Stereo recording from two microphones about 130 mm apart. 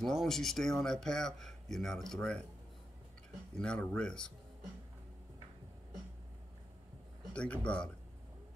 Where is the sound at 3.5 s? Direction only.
5° left (ahead or behind).